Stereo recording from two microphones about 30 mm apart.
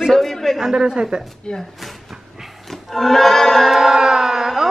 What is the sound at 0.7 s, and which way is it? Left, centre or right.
Speech, right.